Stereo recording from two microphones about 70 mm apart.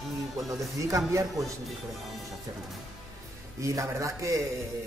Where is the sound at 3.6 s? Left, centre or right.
Right.